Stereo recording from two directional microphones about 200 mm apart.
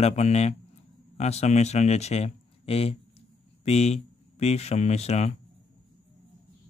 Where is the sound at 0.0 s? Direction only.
35° left (ahead or behind).